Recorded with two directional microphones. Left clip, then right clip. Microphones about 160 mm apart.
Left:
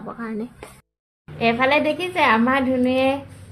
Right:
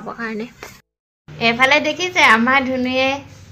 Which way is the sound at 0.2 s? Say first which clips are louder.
Right 5 dB; 10° left (ahead or behind).